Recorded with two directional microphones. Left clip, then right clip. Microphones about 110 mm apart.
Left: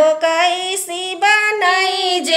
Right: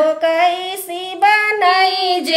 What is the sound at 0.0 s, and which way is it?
Music, 45° left (ahead or behind).